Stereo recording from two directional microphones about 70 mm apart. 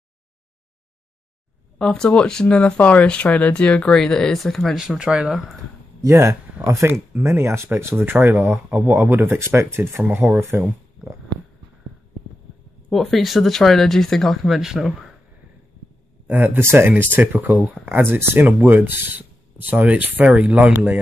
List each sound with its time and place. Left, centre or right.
1.8 s speech: centre
6.0 s speech: right
11.0 s heart sounds: centre
12.9 s speech: centre
16.3 s speech: right